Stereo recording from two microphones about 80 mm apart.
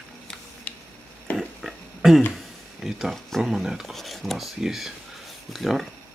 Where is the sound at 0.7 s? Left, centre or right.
Centre.